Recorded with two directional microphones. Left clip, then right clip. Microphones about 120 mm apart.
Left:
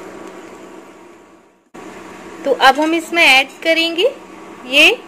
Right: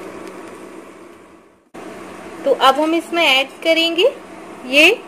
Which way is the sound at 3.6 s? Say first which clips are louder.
Even; centre (ahead or behind).